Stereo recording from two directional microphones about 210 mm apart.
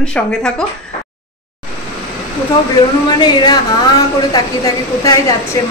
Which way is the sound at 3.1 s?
20° left (ahead or behind).